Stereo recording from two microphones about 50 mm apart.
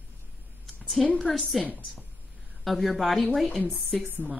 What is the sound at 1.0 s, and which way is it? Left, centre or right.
Speech, centre.